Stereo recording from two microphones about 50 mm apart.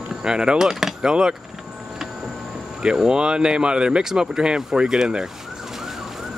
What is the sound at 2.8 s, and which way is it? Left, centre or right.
Speech, centre.